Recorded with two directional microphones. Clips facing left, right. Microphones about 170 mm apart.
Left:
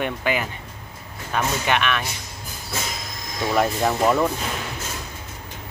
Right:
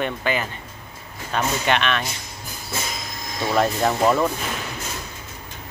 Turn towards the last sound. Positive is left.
turn(degrees=0)  # may be behind; listen again after turning